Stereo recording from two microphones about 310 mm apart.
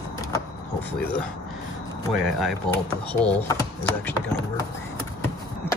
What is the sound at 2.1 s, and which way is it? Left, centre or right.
Speech, centre.